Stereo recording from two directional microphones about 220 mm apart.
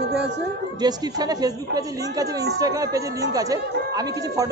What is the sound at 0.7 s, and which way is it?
Speech, 20° right (ahead or behind).